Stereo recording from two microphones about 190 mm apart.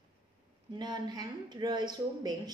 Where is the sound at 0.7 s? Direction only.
25° right (ahead or behind).